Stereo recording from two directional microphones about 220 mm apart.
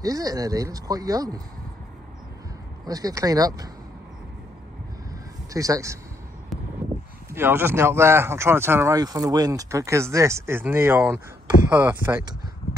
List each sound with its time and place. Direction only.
0.0 s speech: 15° right (ahead or behind)
2.8 s speech: 15° right (ahead or behind)
5.5 s speech: 15° right (ahead or behind)
6.5 s a sound: centre (ahead or behind)
7.2 s speech: 10° right (ahead or behind)